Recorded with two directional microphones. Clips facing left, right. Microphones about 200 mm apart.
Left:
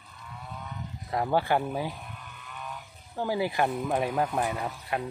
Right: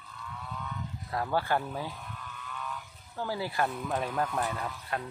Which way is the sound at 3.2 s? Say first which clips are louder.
Left 4 dB; 15° left (ahead or behind).